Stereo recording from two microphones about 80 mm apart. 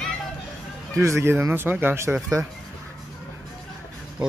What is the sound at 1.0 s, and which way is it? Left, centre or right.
Speech, right.